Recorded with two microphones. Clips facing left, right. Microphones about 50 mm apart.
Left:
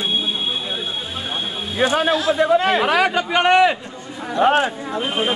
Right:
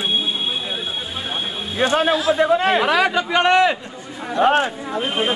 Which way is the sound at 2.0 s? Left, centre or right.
Centre.